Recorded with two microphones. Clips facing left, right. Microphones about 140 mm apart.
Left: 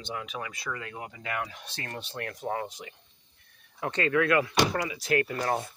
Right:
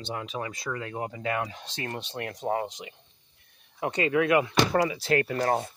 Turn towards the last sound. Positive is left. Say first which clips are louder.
# right 3 dB
turn(degrees=-35)  # may be behind; listen again after turning